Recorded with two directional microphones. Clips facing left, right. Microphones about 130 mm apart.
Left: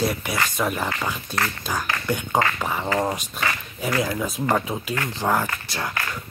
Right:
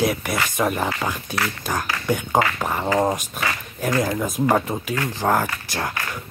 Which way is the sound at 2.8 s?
15° right (ahead or behind).